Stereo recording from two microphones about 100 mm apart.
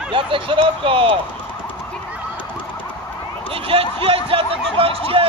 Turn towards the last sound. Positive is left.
turn(degrees=-70)  # may be behind; listen again after turning